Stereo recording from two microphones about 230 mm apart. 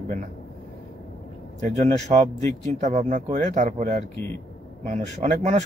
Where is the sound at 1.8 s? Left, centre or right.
Right.